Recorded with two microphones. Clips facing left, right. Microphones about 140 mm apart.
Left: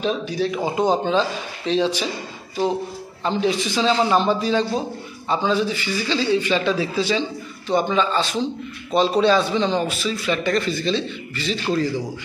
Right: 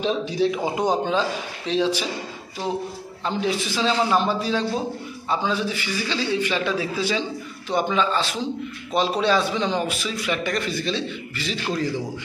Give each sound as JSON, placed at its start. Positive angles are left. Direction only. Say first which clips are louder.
{"t": 0.0, "sound": "speech", "louder": "right 1 dB", "side_deg": -25}
{"t": 0.7, "sound": "a man's voice", "louder": "left 2 dB", "side_deg": -10}
{"t": 3.3, "sound": "a man's voice", "louder": "left 3 dB", "side_deg": -5}